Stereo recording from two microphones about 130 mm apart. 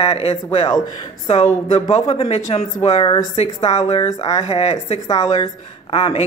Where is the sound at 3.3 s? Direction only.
55° left (ahead or behind).